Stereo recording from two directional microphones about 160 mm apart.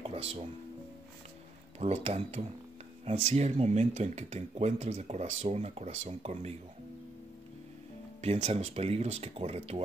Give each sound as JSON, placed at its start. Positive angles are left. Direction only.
{"t": 0.0, "sound": "music", "side_deg": -35}
{"t": 1.8, "sound": "speech", "side_deg": -45}
{"t": 8.2, "sound": "speech", "side_deg": -40}